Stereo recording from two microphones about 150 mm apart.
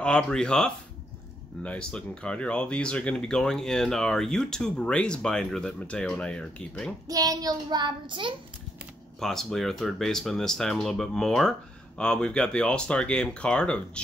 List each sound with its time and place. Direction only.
0.0 s speech: 5° left (ahead or behind)
7.1 s child singing: 25° right (ahead or behind)
9.2 s speech: centre (ahead or behind)